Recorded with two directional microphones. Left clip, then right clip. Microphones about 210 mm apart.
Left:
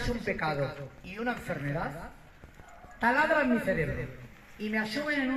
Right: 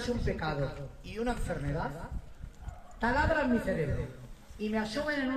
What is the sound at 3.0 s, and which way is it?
A man's voice, centre (ahead or behind).